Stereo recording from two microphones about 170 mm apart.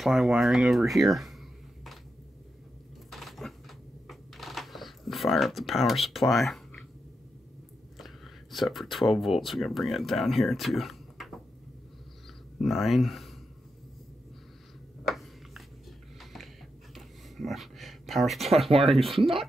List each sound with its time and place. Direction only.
0.0 s speech: centre (ahead or behind)
3.1 s typewriter: centre (ahead or behind)
8.0 s speech: centre (ahead or behind)
12.5 s speech: centre (ahead or behind)
15.0 s a sound: centre (ahead or behind)
16.9 s a sound: centre (ahead or behind)
18.7 s speech: 35° right (ahead or behind)
19.0 s speech: centre (ahead or behind)